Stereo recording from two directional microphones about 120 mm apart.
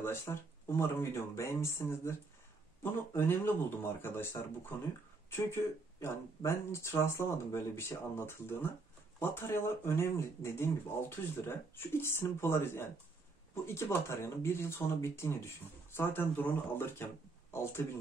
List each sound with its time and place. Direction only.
0.0 s a man's voice: 20° left (ahead or behind)
3.2 s a man's voice: 20° left (ahead or behind)